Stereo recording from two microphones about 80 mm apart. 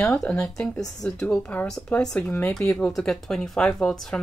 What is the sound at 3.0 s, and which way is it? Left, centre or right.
Speech, centre.